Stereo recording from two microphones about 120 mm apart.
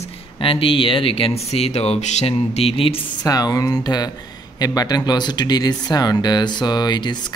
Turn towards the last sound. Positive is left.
turn(degrees=35)  # may be behind; listen again after turning